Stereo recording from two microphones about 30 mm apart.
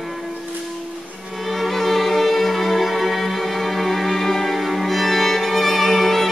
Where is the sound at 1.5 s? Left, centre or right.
Centre.